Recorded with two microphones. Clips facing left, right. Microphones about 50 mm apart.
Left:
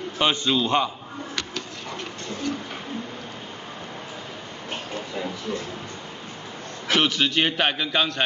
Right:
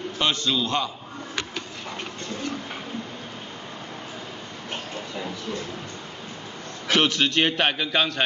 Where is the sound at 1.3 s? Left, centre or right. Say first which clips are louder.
Right 2 dB; centre.